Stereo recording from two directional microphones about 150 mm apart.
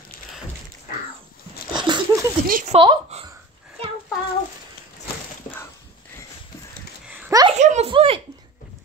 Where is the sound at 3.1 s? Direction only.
45° right (ahead or behind).